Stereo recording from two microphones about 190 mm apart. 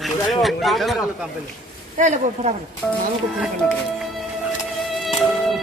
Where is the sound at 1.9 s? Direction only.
40° right (ahead or behind).